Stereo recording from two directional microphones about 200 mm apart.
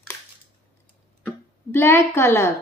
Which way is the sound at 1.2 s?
10° left (ahead or behind).